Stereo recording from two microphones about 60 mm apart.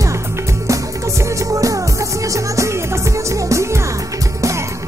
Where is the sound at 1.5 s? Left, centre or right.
Right.